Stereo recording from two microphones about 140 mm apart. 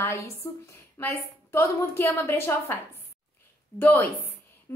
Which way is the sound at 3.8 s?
15° left (ahead or behind).